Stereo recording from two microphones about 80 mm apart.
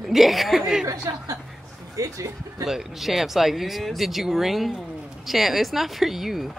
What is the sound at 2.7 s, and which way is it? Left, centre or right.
Speech, centre.